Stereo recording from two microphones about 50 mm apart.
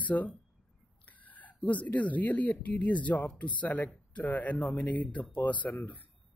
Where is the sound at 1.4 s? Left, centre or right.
Left.